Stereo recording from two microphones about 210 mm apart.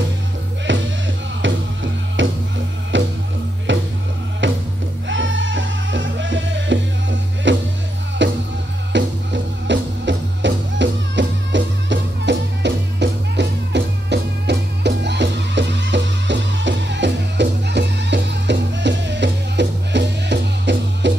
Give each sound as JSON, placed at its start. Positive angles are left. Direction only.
{"t": 0.7, "sound": "music", "side_deg": -60}